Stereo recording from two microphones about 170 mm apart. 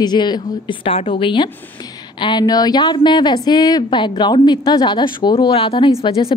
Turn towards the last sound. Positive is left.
turn(degrees=35)  # may be behind; listen again after turning